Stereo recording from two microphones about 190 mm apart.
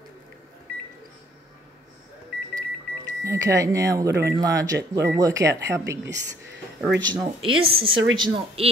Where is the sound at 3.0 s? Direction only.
15° right (ahead or behind).